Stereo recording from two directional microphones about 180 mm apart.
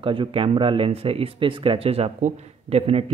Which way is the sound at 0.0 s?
30° right (ahead or behind).